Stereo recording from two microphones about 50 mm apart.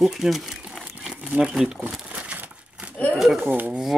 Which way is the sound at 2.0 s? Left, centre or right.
Right.